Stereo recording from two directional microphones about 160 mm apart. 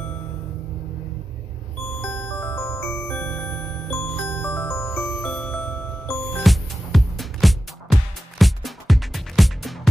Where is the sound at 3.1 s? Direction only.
5° left (ahead or behind).